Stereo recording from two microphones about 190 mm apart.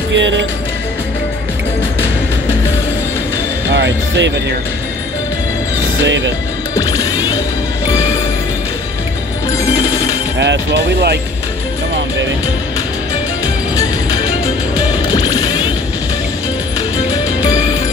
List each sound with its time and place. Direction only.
0.1 s speech: 75° right (ahead or behind)
3.7 s speech: 70° right (ahead or behind)
6.0 s speech: 70° right (ahead or behind)
6.7 s music: 20° left (ahead or behind)
9.8 s music: 15° left (ahead or behind)
10.4 s speech: 60° right (ahead or behind)
13.7 s music: 20° left (ahead or behind)
17.5 s music: 20° left (ahead or behind)